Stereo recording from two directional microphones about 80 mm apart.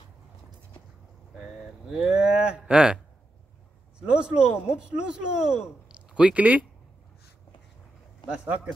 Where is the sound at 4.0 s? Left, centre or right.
Centre.